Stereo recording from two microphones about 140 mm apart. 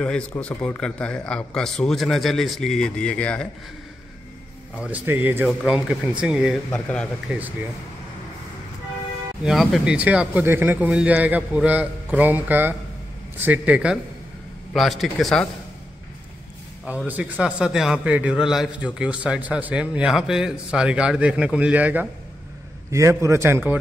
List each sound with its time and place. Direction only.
0.0 s speech: 10° left (ahead or behind)
4.8 s speech: 10° right (ahead or behind)
6.7 s a man's voice: 10° left (ahead or behind)
7.2 s speech: 10° right (ahead or behind)
9.4 s speech: centre (ahead or behind)
16.8 s speech: 10° right (ahead or behind)
22.8 s speech: 20° right (ahead or behind)